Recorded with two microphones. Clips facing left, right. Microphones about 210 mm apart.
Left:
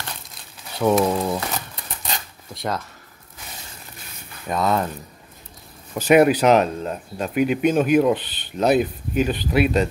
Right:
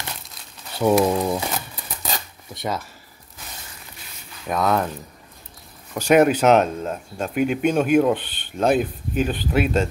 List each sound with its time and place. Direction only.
0.7 s speech: 10° right (ahead or behind)
2.5 s speech: centre (ahead or behind)
4.5 s speech: centre (ahead or behind)
5.9 s speech: 5° left (ahead or behind)